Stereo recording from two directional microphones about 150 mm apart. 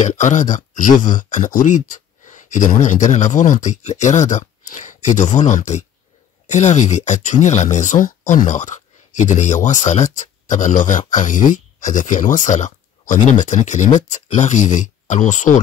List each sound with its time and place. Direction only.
0.0 s speech: 55° left (ahead or behind)